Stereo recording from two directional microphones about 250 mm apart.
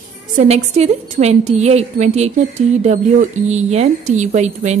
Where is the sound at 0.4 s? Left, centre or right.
Right.